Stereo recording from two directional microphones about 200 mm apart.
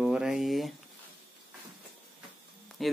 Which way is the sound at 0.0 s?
5° right (ahead or behind).